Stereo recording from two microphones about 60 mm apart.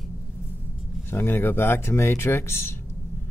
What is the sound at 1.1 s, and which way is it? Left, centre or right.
Speech, left.